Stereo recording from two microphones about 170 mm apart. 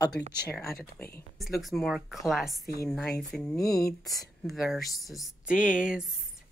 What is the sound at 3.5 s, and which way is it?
Speech, 20° left (ahead or behind).